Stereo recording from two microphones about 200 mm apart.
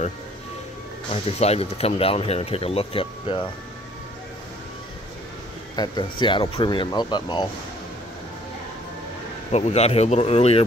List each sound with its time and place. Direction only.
1.1 s speech: 30° left (ahead or behind)
5.8 s speech: 20° left (ahead or behind)
9.5 s speech: 35° left (ahead or behind)